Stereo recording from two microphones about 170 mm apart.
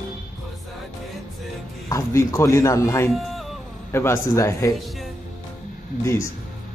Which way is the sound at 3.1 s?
Centre (ahead or behind).